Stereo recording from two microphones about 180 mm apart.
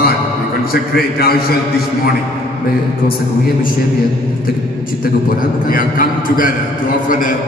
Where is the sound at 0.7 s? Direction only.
60° left (ahead or behind).